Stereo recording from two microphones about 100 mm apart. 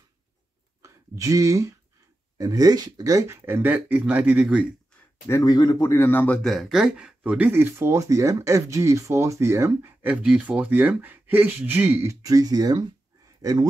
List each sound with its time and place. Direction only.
0.8 s speech: 35° right (ahead or behind); by 4.6 s 15° right (ahead or behind)
5.3 s speech: 35° left (ahead or behind)
5.9 s speech: 25° left (ahead or behind)
6.4 s speech: centre (ahead or behind); by 13.7 s 40° right (ahead or behind)